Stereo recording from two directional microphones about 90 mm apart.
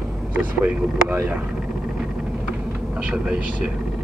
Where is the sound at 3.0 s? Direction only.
10° right (ahead or behind).